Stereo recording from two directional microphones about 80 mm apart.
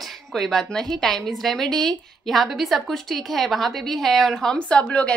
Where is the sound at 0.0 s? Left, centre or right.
Centre.